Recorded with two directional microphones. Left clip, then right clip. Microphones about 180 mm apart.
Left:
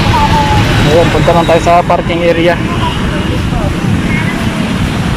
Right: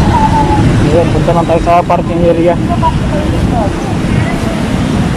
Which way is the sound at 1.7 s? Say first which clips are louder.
Right 1 dB; centre (ahead or behind).